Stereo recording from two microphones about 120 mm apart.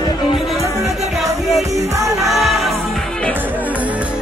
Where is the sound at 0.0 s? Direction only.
40° left (ahead or behind).